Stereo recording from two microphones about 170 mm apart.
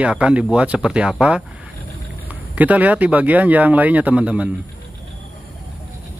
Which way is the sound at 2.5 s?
10° right (ahead or behind).